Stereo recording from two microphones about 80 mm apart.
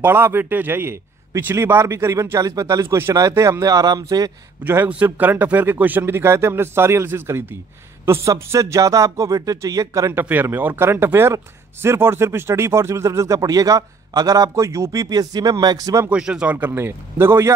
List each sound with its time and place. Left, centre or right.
0.0 s a man's voice: right
4.6 s a man's voice: right
10.2 s a man's voice: right
16.1 s speech: centre
16.7 s a man's voice: right